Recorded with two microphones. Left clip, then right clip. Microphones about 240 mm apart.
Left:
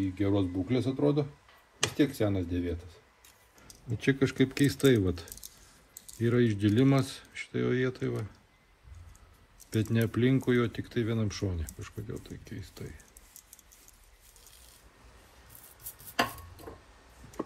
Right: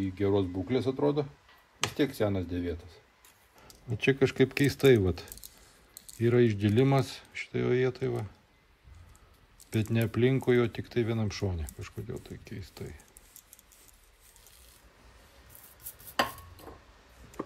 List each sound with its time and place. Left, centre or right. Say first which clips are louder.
0.0 s speech: right 1 dB; right
9.7 s speech: left 1 dB; right
15.8 s chopping: left 1 dB; centre